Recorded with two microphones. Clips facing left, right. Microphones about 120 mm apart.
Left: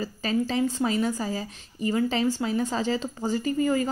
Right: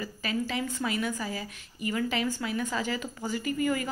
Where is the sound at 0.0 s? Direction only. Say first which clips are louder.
Left 5 dB; 35° left (ahead or behind).